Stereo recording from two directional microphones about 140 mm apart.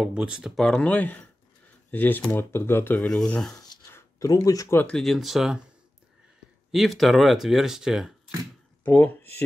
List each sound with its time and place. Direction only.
0.0 s speech: 5° right (ahead or behind); by 3.1 s 15° left (ahead or behind)
3.1 s speech: 5° left (ahead or behind)
3.9 s speech: 25° left (ahead or behind)
4.7 s speech: 5° left (ahead or behind)
6.7 s speech: centre (ahead or behind)
8.8 s speech: 15° left (ahead or behind)